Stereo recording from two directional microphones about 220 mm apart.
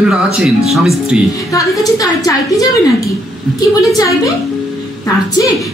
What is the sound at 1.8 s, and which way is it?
Speech, 15° left (ahead or behind).